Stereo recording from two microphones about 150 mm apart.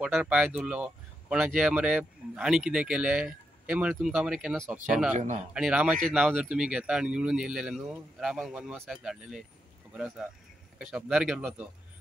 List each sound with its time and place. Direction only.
0.0 s speech: 5° right (ahead or behind)
5.1 s a man's voice: 55° right (ahead or behind)
5.5 s speech: 5° right (ahead or behind)